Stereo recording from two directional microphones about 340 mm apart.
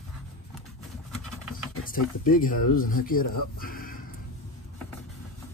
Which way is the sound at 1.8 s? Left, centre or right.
Left.